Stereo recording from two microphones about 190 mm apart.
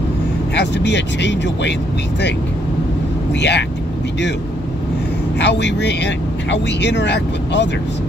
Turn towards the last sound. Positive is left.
turn(degrees=65)  # may be behind; listen again after turning